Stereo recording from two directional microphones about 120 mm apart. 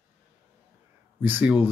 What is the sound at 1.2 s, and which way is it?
Speech, 15° right (ahead or behind).